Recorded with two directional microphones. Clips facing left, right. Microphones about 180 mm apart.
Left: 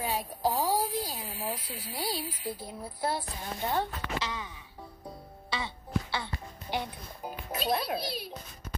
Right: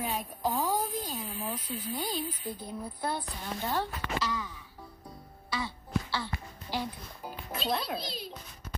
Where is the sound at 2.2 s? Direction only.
10° left (ahead or behind).